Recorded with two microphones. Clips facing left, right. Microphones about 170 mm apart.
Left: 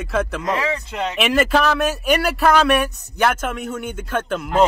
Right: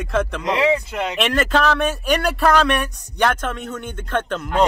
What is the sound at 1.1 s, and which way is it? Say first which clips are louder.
Speech: left 2 dB; 5° left (ahead or behind).